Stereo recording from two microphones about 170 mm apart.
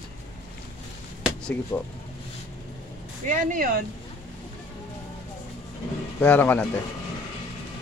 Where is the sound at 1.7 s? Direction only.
15° left (ahead or behind).